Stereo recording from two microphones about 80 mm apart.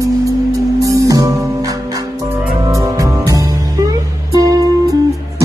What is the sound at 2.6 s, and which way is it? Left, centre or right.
Music, right.